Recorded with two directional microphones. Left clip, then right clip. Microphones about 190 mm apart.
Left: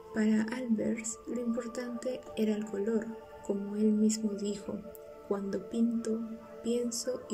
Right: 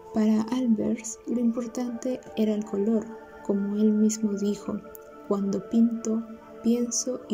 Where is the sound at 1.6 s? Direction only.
20° right (ahead or behind).